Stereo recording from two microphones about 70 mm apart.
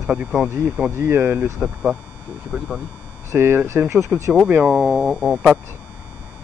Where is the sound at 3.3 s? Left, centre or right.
Right.